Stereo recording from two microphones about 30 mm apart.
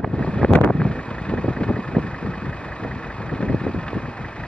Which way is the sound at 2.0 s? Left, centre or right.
Left.